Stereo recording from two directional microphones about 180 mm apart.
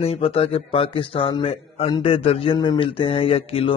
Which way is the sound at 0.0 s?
30° left (ahead or behind).